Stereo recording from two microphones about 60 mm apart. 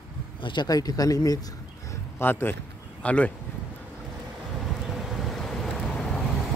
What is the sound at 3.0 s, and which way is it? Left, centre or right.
Speech, left.